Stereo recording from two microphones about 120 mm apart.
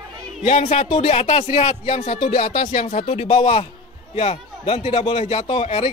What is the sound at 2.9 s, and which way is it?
A man's voice, 60° left (ahead or behind).